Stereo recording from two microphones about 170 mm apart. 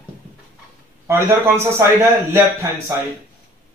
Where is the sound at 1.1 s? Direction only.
15° right (ahead or behind).